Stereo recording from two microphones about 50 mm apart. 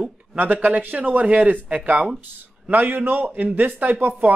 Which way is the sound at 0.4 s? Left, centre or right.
Right.